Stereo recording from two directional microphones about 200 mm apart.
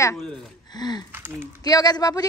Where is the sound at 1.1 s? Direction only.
10° right (ahead or behind).